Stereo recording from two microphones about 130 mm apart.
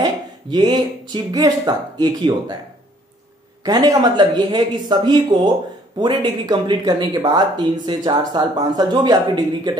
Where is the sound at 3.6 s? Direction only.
30° right (ahead or behind).